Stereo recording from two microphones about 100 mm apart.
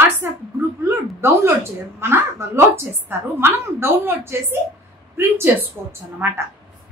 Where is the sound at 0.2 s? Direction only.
25° right (ahead or behind).